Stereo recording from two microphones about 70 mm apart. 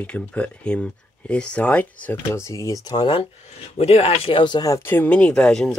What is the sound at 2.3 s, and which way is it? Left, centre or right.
Speech, left.